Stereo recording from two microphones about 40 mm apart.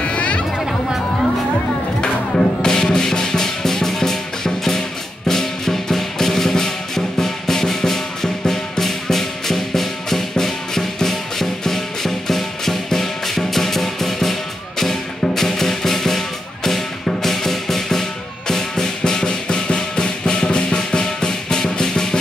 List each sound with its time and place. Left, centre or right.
0.0 s a sound: left
2.0 s music: left
5.3 s drum: centre
7.2 s music: centre